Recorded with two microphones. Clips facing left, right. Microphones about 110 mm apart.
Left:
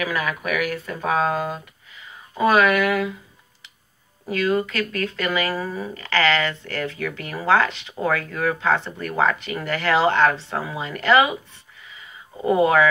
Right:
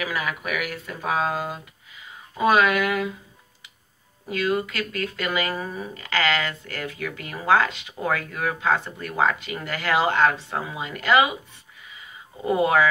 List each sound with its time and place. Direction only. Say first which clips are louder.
0.0 s speech: left 3 dB; 5° right (ahead or behind)
2.3 s speech: left 2 dB; 20° right (ahead or behind)
4.3 s speech: left 3 dB; 15° right (ahead or behind)
12.4 s speech: left 4 dB; 30° left (ahead or behind)